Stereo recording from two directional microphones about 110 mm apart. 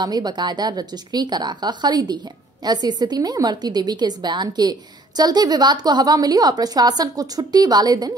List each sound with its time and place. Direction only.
0.0 s a woman's voice: 40° right (ahead or behind)